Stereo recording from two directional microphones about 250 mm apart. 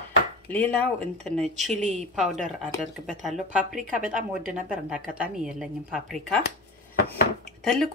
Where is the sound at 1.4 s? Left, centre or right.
Right.